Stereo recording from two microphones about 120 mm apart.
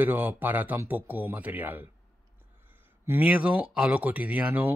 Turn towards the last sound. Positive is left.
turn(degrees=-15)  # may be behind; listen again after turning